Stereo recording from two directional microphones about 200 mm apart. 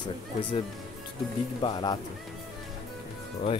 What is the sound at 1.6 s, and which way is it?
Speech, 25° left (ahead or behind).